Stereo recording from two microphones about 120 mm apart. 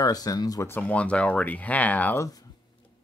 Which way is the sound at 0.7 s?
15° left (ahead or behind).